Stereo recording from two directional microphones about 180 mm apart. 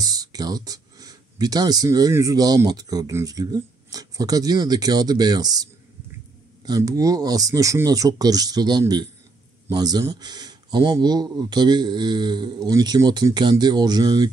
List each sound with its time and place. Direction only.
0.0 s speech: 20° right (ahead or behind)